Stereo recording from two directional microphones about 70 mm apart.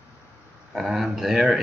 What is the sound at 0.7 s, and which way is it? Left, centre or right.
Speech, centre.